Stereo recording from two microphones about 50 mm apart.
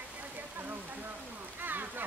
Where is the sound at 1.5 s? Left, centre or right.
Right.